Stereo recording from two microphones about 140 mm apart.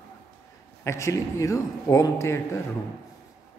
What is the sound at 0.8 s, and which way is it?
A man's voice, 20° left (ahead or behind).